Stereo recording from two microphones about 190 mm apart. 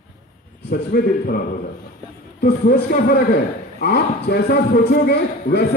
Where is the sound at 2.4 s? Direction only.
50° left (ahead or behind).